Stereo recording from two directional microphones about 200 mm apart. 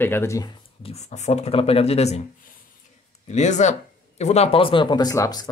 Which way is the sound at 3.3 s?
35° left (ahead or behind).